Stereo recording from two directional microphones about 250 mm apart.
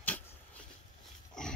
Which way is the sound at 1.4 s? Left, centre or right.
Centre.